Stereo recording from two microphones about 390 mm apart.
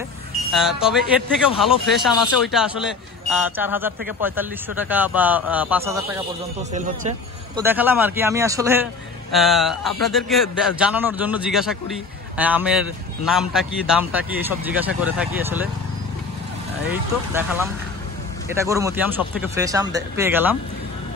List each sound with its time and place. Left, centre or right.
0.5 s a man's voice: centre
6.7 s speech: centre
7.6 s a man's voice: centre
16.9 s a man's voice: centre